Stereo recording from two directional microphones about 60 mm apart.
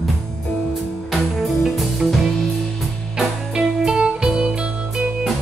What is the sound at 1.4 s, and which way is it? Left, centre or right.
Music, centre.